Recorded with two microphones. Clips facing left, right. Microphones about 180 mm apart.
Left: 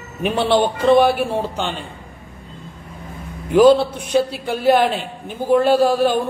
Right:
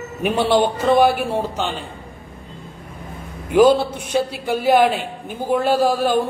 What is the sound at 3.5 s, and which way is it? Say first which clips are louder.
Speech: left 2 dB; 55° right (ahead or behind).